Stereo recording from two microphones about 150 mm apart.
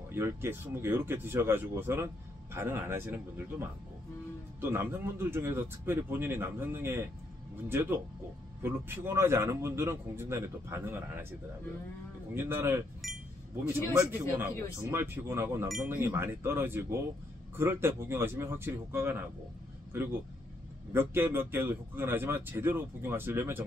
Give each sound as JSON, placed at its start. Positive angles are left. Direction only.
{"t": 0.1, "sound": "speech", "side_deg": -15}
{"t": 12.4, "sound": "speech", "side_deg": -15}
{"t": 14.4, "sound": "speech", "side_deg": -15}